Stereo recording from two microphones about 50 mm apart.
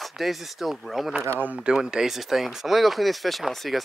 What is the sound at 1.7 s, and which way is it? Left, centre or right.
Speech, centre.